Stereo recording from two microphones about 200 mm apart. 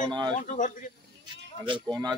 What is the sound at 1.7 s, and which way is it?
Speech, 20° right (ahead or behind).